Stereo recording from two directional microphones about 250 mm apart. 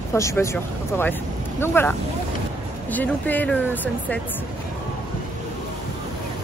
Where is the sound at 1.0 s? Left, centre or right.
Centre.